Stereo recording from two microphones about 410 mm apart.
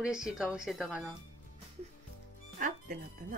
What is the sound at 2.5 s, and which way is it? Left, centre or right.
Speech, centre.